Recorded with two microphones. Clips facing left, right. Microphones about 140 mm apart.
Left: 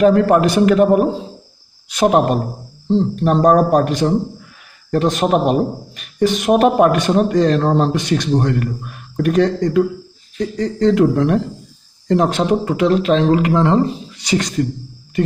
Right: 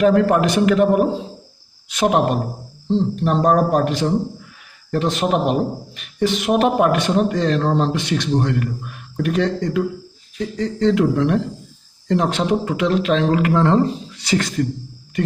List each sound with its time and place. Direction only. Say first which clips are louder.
0.0 s speech: left 3 dB; 40° left (ahead or behind)
2.9 s speech: left 3 dB; 50° left (ahead or behind); by 13.5 s 30° left (ahead or behind)
13.5 s speech: left 1 dB; 15° left (ahead or behind)